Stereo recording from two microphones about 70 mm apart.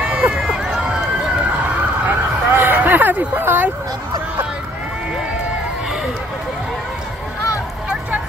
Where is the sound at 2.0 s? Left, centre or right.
Right.